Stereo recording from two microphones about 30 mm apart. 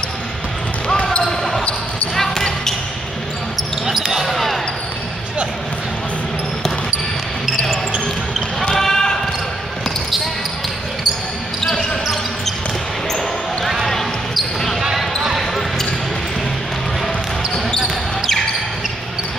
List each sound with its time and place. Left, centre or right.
0.8 s basketball bounce: left
2.1 s basketball bounce: centre
3.8 s basketball bounce: centre
4.3 s basketball bounce: centre
8.6 s basketball bounce: centre
13.8 s basketball bounce: centre
17.8 s basketball bounce: centre